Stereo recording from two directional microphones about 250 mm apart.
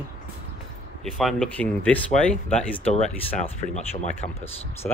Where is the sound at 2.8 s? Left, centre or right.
Left.